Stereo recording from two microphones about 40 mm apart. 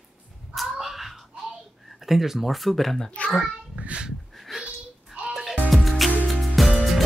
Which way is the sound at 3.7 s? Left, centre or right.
Right.